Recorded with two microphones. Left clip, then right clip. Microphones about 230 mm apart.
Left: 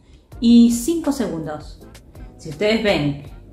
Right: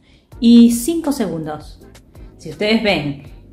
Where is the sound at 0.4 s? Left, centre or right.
Right.